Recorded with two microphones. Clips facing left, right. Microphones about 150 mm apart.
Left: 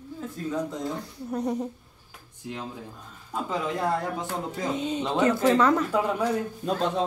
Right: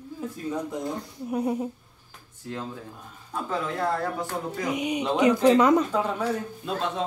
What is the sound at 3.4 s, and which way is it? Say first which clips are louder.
Speech: even; 15° left (ahead or behind).